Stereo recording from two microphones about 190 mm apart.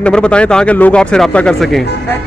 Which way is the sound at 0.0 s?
5° left (ahead or behind).